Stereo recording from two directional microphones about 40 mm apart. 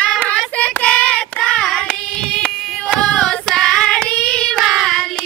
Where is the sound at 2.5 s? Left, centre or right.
Centre.